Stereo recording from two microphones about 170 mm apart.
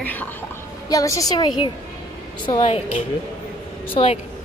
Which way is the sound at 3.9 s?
35° left (ahead or behind).